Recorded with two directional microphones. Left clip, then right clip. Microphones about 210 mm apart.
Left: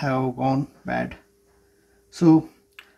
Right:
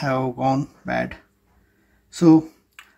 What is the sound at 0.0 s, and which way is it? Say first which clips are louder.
Speech: right 2 dB; centre (ahead or behind).